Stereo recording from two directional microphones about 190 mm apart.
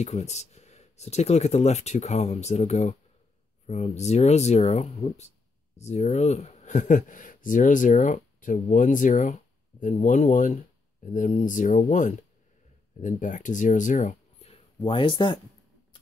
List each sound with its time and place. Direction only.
0.0 s speech: 35° left (ahead or behind)